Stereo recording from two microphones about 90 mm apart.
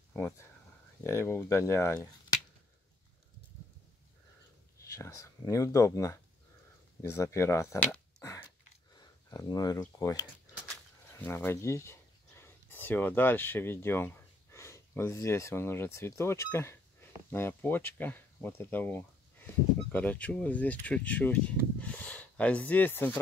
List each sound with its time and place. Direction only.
1.0 s speech: 30° left (ahead or behind)
4.7 s speech: 35° left (ahead or behind)
8.5 s a sound: 45° left (ahead or behind)
11.1 s speech: 25° left (ahead or behind)